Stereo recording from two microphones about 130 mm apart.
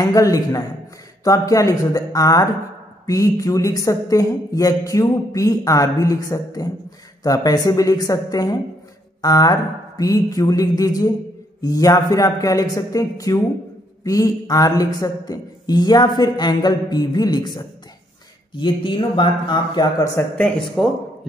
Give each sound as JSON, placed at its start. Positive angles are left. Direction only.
{"t": 0.0, "sound": "speech", "side_deg": 30}
{"t": 20.3, "sound": "speech", "side_deg": 5}